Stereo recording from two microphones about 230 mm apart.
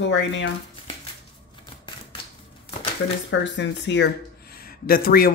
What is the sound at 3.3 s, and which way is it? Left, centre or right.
Speech, left.